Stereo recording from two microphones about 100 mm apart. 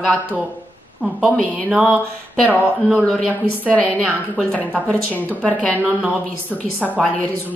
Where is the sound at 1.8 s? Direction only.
5° left (ahead or behind).